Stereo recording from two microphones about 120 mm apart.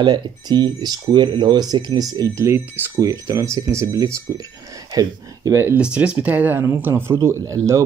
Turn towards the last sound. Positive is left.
turn(degrees=-25)  # may be behind; listen again after turning